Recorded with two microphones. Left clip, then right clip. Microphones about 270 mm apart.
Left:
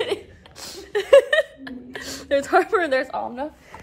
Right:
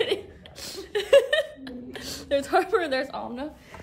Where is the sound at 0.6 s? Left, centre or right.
Centre.